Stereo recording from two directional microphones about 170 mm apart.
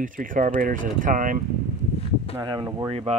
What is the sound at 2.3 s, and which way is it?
Speech, 25° right (ahead or behind).